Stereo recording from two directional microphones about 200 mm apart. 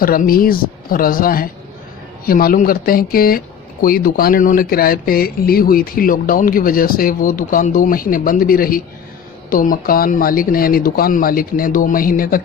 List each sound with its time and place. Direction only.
0.0 s speech: 45° left (ahead or behind)